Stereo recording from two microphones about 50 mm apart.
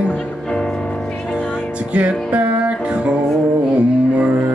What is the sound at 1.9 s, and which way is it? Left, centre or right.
Music, right.